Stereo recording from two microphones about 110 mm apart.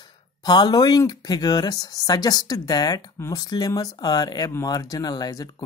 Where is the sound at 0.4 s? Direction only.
40° left (ahead or behind).